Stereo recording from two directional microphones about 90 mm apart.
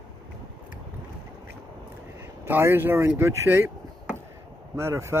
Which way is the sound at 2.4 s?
25° right (ahead or behind).